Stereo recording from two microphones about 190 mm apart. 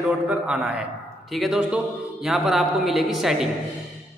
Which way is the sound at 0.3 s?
5° right (ahead or behind).